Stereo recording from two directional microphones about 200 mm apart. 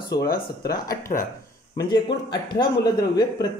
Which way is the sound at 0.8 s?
15° left (ahead or behind).